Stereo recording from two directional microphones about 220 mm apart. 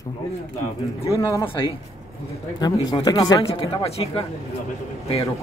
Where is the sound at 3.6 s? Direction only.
25° left (ahead or behind).